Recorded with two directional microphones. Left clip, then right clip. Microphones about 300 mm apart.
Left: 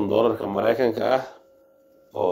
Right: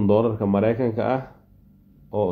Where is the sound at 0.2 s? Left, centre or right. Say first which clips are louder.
Even; centre.